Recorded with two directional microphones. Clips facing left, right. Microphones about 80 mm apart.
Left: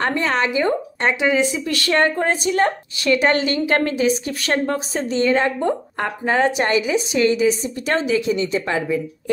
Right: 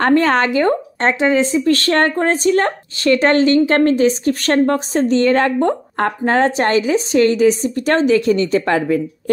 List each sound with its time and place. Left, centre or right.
0.0 s a woman's voice: right
1.0 s a woman's voice: right